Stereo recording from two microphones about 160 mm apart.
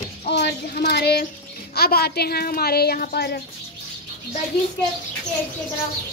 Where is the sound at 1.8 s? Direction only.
75° left (ahead or behind).